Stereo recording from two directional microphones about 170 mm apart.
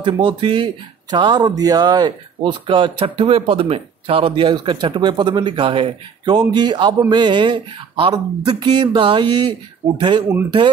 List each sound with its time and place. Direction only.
0.0 s speech: 30° right (ahead or behind)